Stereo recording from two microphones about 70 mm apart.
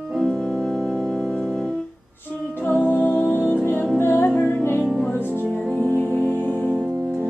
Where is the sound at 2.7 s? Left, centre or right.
Left.